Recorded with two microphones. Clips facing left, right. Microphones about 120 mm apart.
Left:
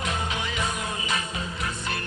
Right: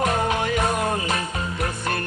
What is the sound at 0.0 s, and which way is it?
Music, 50° right (ahead or behind).